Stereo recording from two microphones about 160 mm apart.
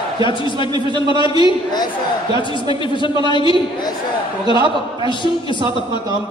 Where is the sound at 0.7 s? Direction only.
30° right (ahead or behind).